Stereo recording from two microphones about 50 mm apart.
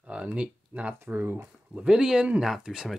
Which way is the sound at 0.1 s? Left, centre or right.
Right.